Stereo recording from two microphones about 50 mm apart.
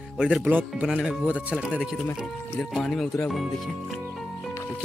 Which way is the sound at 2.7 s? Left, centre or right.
Centre.